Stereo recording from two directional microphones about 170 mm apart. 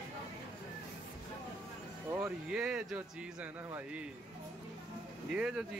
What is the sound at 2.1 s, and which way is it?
Speech, 10° right (ahead or behind).